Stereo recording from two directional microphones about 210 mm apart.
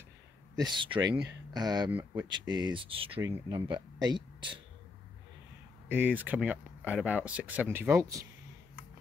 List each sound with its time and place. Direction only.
0.6 s speech: 20° right (ahead or behind)
1.9 s speech: 5° right (ahead or behind)
2.3 s speech: 20° right (ahead or behind)
3.2 s speech: 10° right (ahead or behind)
3.5 s speech: 25° right (ahead or behind)
5.9 s speech: 10° right (ahead or behind)